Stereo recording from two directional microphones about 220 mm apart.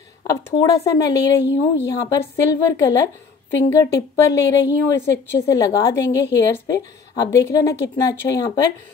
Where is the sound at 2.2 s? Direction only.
15° left (ahead or behind).